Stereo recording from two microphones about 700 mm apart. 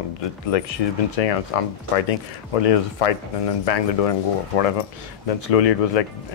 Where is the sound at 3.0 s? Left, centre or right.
Left.